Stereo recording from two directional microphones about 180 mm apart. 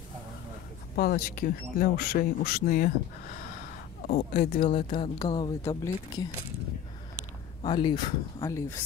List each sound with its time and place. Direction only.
0.9 s speech: 55° left (ahead or behind)
4.3 s speech: 35° left (ahead or behind)
7.6 s speech: 25° left (ahead or behind)